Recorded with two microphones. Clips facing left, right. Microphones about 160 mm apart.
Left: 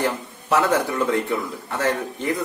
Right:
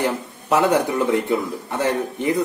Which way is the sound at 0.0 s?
20° right (ahead or behind).